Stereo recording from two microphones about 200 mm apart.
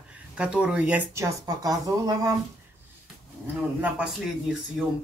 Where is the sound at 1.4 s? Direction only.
20° right (ahead or behind).